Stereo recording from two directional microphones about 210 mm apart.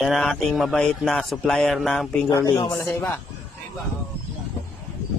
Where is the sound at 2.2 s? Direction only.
20° left (ahead or behind).